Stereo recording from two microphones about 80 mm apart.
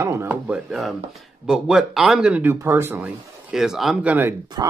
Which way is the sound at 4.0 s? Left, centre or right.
Right.